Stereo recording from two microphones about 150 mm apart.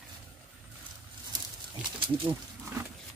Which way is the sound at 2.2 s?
15° right (ahead or behind).